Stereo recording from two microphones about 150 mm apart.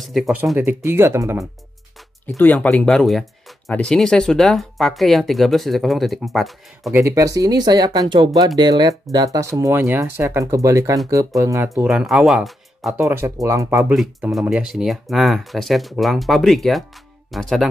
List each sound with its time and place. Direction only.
0.0 s speech: centre (ahead or behind)
0.6 s speech: 15° right (ahead or behind)
2.2 s speech: 10° left (ahead or behind)
6.9 s speech: 15° right (ahead or behind)
11.9 s speech: 5° right (ahead or behind)
12.9 s speech: 15° right (ahead or behind)
13.9 s speech: 5° right (ahead or behind)